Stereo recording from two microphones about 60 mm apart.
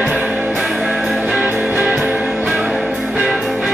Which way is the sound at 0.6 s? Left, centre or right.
Centre.